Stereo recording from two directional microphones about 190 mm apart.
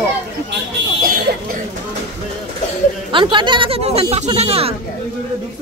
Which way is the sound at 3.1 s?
25° right (ahead or behind).